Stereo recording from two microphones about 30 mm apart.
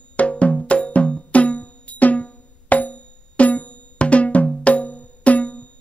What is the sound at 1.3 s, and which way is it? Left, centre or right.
Music, left.